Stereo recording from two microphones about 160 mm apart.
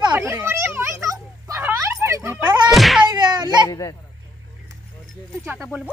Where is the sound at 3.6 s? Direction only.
20° left (ahead or behind).